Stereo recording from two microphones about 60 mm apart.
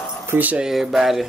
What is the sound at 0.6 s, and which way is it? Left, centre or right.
Speech, centre.